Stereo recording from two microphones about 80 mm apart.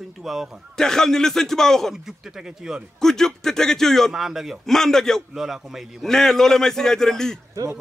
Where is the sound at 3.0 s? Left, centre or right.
Centre.